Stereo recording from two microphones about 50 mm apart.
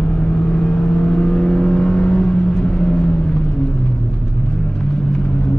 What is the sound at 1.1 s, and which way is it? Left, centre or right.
Vehicle, centre.